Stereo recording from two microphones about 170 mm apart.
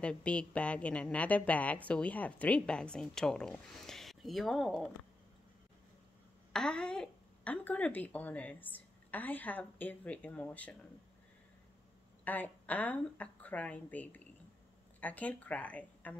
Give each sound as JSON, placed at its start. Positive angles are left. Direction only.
{"t": 0.0, "sound": "a woman's voice", "side_deg": 5}
{"t": 6.5, "sound": "a woman's voice", "side_deg": 5}
{"t": 12.3, "sound": "a woman's voice", "side_deg": 10}